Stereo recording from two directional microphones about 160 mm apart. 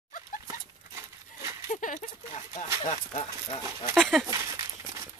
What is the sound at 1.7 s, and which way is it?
Speech, 50° left (ahead or behind).